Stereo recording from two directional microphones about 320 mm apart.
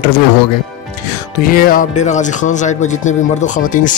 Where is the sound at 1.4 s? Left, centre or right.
Left.